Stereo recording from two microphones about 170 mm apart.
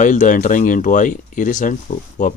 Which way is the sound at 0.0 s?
50° left (ahead or behind).